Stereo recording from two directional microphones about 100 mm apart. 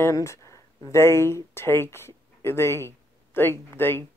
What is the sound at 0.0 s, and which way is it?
Speech, 30° left (ahead or behind).